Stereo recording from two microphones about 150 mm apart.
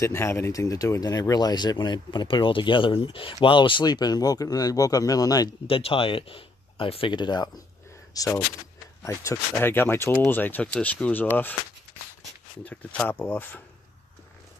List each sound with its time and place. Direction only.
0.0 s speech: 20° left (ahead or behind)
5.7 s speech: 40° left (ahead or behind); by 11.5 s 10° left (ahead or behind)
12.6 s speech: 10° left (ahead or behind)